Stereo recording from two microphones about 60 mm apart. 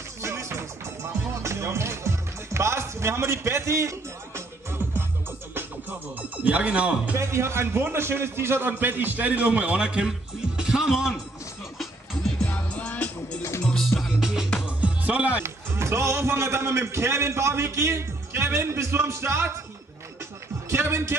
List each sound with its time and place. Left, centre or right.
0.2 s music: right
5.5 s music: right
6.3 s speech: right
7.2 s a man's voice: right; by 10.1 s centre
10.6 s music: centre
12.4 s music: left
13.7 s music: centre
14.2 s music: centre
14.8 s music: right
15.4 s a man's voice: right
20.7 s music: right